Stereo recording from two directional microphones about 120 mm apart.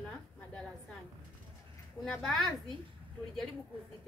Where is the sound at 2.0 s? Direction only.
5° left (ahead or behind).